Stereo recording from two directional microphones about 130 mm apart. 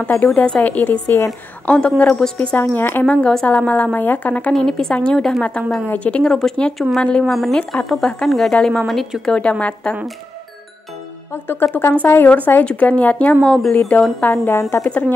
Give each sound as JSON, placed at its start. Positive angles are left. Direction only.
{"t": 0.0, "sound": "a woman's voice", "side_deg": 15}
{"t": 11.4, "sound": "a woman's voice", "side_deg": 15}